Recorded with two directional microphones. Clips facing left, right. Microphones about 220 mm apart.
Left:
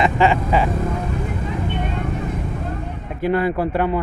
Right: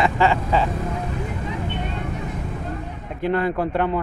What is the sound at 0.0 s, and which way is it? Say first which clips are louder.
Speech: left 2 dB; 15° left (ahead or behind).